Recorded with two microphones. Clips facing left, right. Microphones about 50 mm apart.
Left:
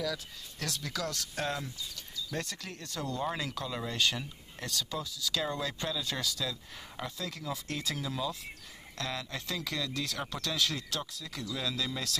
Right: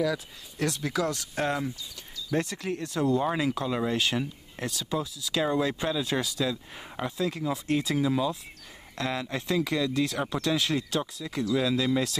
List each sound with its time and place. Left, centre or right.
0.0 s speech: centre